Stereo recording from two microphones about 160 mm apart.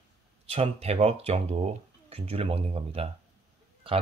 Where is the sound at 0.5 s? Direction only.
40° right (ahead or behind).